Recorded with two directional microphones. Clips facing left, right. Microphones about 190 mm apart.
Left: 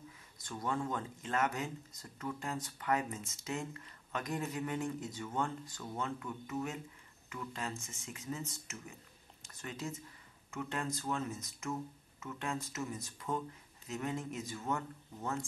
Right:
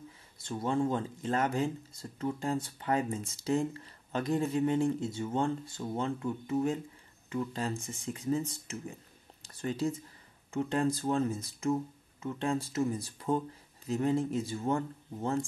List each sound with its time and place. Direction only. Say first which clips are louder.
0.4 s speech: right 7 dB; 25° right (ahead or behind)